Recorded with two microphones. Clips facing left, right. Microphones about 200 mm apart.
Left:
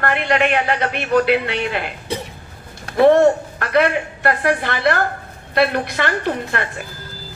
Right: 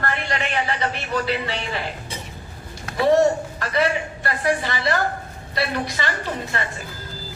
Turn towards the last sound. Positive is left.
turn(degrees=60)  # may be behind; listen again after turning